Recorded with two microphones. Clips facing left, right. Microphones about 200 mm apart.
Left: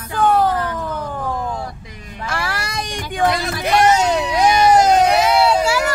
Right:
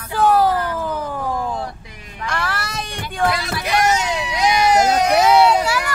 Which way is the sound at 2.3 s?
10° left (ahead or behind).